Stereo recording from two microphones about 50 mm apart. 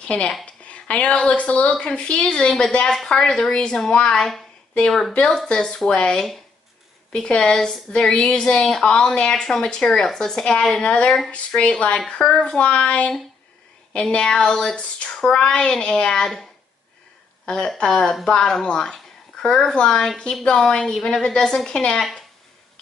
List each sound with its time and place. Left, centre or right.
0.0 s a woman's voice: left
5.5 s a woman's voice: centre
14.1 s speech: centre
14.8 s a woman's voice: left
17.5 s speech: centre